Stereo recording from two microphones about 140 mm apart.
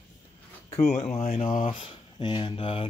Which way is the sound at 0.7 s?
50° left (ahead or behind).